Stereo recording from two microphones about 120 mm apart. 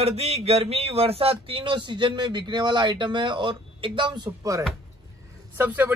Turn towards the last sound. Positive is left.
turn(degrees=-15)  # may be behind; listen again after turning